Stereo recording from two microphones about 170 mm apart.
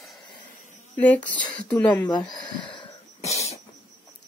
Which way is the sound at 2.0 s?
25° left (ahead or behind).